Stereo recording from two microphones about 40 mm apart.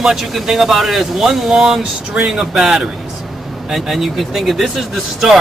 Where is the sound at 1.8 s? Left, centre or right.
Right.